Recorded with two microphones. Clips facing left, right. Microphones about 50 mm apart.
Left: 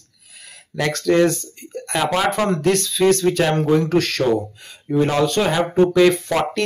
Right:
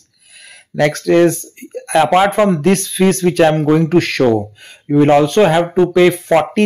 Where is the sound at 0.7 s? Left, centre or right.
Right.